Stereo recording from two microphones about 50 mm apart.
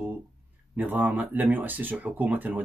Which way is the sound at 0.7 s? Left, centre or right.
Right.